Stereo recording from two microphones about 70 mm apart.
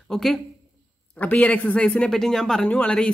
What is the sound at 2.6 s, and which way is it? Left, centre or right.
Speech, centre.